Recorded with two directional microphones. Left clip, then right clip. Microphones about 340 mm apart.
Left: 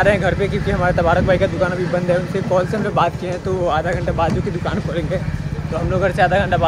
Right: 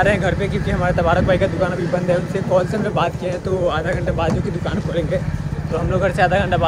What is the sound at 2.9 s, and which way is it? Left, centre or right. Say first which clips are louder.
Speech: left 5 dB; centre.